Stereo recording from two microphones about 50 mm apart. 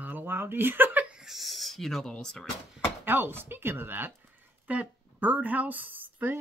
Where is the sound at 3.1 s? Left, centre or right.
Right.